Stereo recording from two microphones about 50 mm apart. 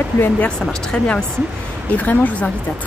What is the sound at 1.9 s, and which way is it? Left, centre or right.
Speech, left.